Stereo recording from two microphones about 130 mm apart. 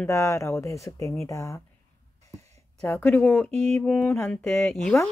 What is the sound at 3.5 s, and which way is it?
Music, 60° right (ahead or behind).